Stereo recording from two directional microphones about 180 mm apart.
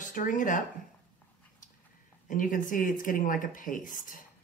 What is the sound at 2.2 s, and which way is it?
Speech, 50° left (ahead or behind).